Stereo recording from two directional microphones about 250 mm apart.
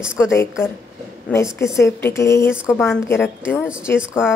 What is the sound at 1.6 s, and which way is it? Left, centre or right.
A woman's voice, centre.